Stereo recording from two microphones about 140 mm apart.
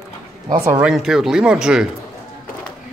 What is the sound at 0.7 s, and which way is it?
Speech, 5° right (ahead or behind).